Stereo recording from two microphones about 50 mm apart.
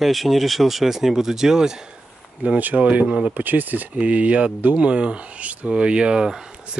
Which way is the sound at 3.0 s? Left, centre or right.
Centre.